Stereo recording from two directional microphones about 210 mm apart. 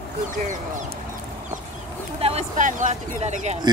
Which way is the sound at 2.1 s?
30° right (ahead or behind).